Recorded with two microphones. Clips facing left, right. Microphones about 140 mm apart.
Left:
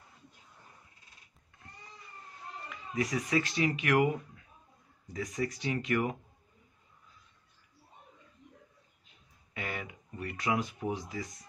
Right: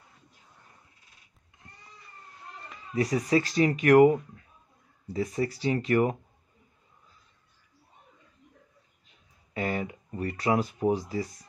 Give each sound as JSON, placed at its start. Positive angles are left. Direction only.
{"t": 2.7, "sound": "speech", "side_deg": -35}
{"t": 9.5, "sound": "speech", "side_deg": -35}